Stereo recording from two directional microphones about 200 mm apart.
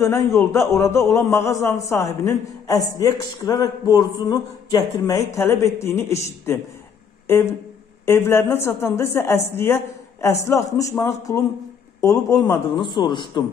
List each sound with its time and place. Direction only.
0.0 s speech: 15° left (ahead or behind)
7.3 s a man's voice: 10° left (ahead or behind)